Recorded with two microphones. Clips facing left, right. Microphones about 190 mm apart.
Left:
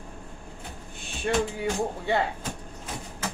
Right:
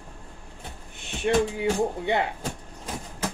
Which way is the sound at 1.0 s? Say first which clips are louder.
Right 4 dB; 20° right (ahead or behind).